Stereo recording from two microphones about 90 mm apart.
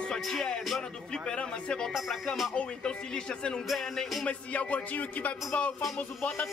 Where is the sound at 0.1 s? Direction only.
5° left (ahead or behind).